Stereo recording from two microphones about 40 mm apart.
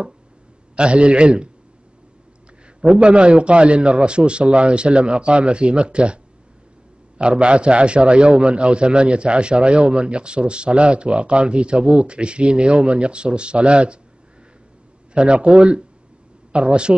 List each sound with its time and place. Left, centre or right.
0.7 s a man's voice: right
2.8 s a man's voice: right
7.2 s a man's voice: right
15.1 s a man's voice: right